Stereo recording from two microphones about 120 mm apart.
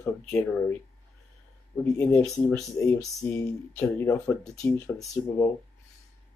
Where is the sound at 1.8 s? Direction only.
20° left (ahead or behind).